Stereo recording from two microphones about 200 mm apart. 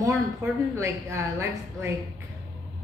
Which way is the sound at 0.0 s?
15° right (ahead or behind).